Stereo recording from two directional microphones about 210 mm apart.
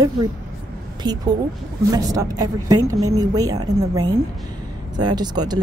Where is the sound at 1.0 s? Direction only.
20° right (ahead or behind).